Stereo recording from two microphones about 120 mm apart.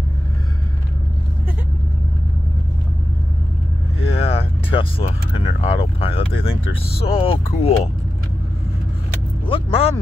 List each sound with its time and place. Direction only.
4.0 s speech: 55° left (ahead or behind)
9.5 s speech: 50° left (ahead or behind)